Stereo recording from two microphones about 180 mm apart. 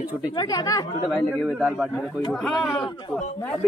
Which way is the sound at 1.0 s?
Centre (ahead or behind).